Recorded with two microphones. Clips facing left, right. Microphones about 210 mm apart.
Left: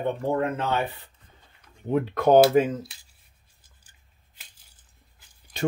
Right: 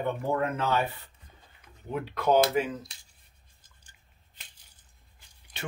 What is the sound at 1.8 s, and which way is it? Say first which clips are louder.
Speech: left 6 dB; 50° left (ahead or behind).